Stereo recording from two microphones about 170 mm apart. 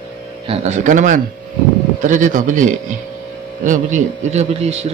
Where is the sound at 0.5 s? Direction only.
45° right (ahead or behind).